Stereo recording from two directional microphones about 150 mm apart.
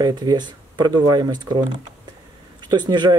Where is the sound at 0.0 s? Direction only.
25° right (ahead or behind).